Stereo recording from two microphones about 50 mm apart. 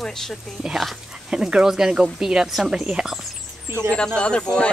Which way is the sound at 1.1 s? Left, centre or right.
Centre.